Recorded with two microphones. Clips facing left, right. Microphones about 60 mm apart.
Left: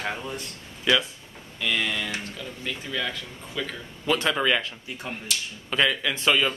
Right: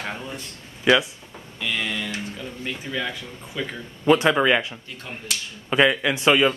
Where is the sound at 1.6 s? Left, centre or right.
Centre.